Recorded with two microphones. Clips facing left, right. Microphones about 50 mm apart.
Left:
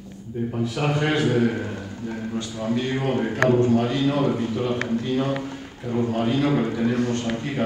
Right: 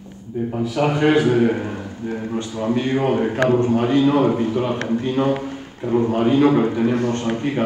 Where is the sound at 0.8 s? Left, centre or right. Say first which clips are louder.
Right 6 dB; centre.